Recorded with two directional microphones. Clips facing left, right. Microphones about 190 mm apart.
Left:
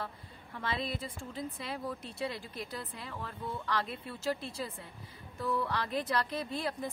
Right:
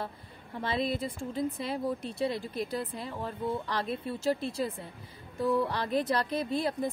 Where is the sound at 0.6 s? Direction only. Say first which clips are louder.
Right 6 dB; 20° right (ahead or behind).